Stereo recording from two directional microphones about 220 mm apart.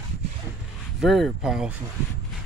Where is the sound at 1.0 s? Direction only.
Centre (ahead or behind).